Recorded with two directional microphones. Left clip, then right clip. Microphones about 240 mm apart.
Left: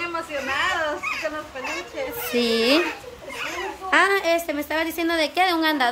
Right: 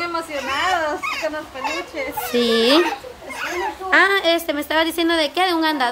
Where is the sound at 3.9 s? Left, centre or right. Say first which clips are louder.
Right 3 dB; centre.